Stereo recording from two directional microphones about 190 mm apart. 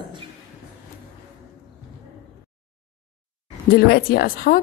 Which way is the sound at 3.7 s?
55° left (ahead or behind).